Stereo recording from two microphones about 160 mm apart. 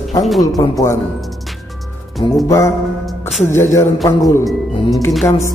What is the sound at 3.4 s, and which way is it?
Music, 15° left (ahead or behind).